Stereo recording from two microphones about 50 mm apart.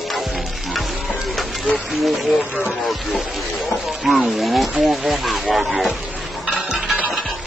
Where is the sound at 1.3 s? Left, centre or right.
Centre.